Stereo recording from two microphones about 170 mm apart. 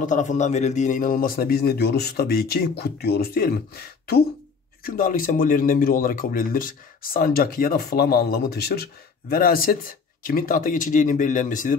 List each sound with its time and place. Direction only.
0.0 s a man's voice: 45° left (ahead or behind); by 8.8 s 70° left (ahead or behind)
9.3 s speech: 60° left (ahead or behind)